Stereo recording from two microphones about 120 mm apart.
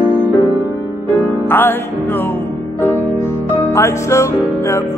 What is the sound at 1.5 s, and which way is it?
Music, 15° left (ahead or behind).